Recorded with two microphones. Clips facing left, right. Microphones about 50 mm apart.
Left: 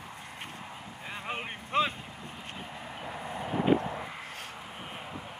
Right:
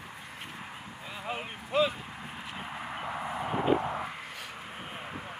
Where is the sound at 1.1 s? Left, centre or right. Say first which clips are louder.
Even; centre.